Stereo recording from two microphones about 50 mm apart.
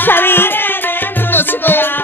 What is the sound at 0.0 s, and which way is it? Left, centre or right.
Music, left.